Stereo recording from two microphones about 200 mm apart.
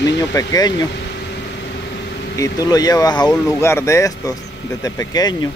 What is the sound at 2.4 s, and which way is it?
Speech, 20° left (ahead or behind).